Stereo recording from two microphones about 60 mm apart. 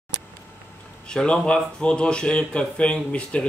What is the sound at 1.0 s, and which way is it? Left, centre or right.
Speech, centre.